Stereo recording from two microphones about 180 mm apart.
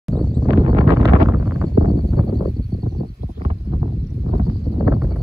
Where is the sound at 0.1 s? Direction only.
5° left (ahead or behind).